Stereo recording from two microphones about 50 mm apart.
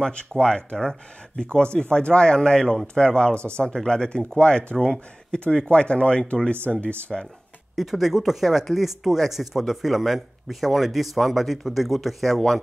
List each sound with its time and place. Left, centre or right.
0.0 s speech: centre
7.7 s speech: centre